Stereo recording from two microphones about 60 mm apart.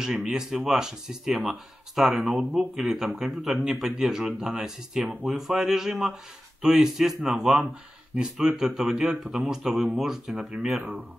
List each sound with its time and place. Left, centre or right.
0.0 s a man's voice: centre
10.5 s speech: right